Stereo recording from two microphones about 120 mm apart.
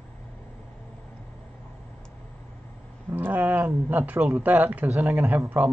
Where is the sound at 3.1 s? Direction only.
15° right (ahead or behind).